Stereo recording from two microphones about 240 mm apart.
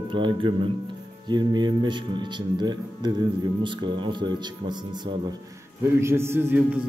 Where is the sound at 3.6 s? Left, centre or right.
Centre.